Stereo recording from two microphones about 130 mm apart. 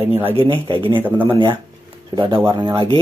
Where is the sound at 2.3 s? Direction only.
30° right (ahead or behind).